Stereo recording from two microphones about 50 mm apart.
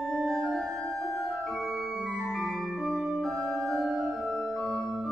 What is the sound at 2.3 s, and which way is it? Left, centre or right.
Music, centre.